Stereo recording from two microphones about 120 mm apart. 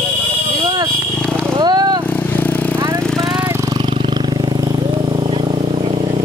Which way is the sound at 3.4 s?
20° right (ahead or behind).